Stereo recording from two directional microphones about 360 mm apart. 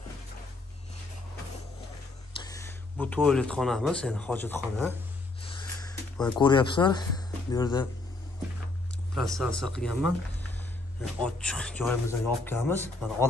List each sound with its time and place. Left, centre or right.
2.4 s speech: centre
5.4 s a sound: centre
6.4 s speech: centre
9.1 s speech: centre
11.1 s speech: centre